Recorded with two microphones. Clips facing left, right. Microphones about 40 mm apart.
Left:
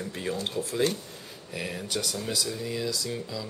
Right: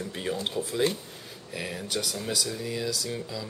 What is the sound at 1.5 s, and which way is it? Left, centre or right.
Speech, centre.